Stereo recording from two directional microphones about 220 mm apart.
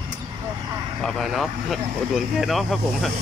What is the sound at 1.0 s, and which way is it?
Speech, centre (ahead or behind).